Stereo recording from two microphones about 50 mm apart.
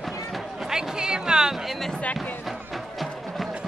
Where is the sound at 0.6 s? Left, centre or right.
Centre.